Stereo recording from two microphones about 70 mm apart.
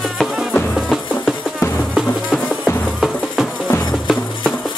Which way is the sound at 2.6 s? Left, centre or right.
Centre.